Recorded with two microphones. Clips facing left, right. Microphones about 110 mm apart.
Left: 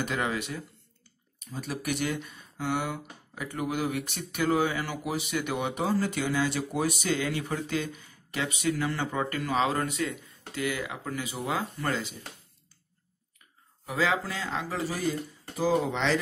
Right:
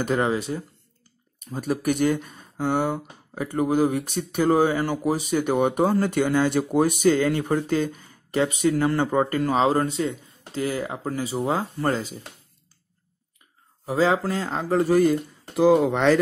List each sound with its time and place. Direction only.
0.0 s speech: 40° right (ahead or behind)
1.4 s speech: 45° right (ahead or behind)
13.8 s speech: 35° right (ahead or behind); by 16.2 s 55° right (ahead or behind)